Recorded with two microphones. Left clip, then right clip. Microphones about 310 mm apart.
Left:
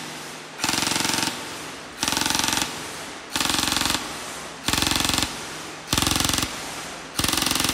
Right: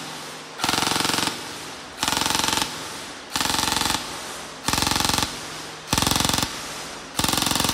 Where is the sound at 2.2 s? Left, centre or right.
Right.